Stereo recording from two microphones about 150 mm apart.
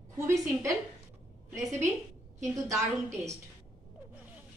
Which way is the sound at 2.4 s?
20° right (ahead or behind).